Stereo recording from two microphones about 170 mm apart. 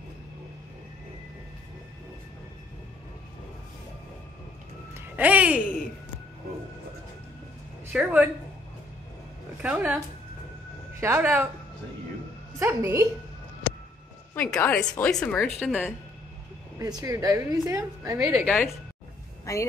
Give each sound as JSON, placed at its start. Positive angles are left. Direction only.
{"t": 4.9, "sound": "a sound", "side_deg": -10}
{"t": 7.9, "sound": "a woman's voice", "side_deg": -10}
{"t": 9.6, "sound": "a woman's voice", "side_deg": -10}
{"t": 12.5, "sound": "a woman's voice", "side_deg": -15}
{"t": 14.3, "sound": "a woman's voice", "side_deg": 5}
{"t": 16.7, "sound": "a woman's voice", "side_deg": -20}
{"t": 18.3, "sound": "speech", "side_deg": 5}
{"t": 19.4, "sound": "speech", "side_deg": 20}